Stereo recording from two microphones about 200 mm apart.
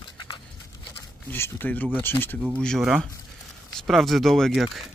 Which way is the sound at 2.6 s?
Centre (ahead or behind).